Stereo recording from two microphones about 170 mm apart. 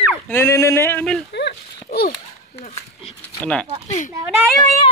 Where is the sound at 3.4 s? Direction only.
5° left (ahead or behind).